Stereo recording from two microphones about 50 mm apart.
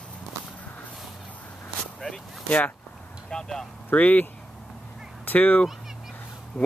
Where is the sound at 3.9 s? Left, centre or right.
Left.